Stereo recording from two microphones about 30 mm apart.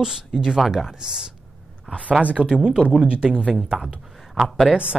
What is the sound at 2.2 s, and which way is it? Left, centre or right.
Speech, right.